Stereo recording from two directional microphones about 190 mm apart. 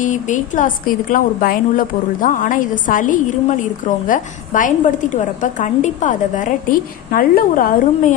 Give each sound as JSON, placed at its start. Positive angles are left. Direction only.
{"t": 0.0, "sound": "a woman's voice", "side_deg": 40}